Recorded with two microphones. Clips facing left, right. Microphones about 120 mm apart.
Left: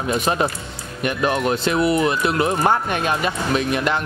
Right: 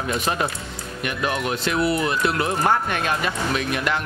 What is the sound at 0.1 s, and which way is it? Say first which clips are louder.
Speech: left 4 dB; 20° left (ahead or behind).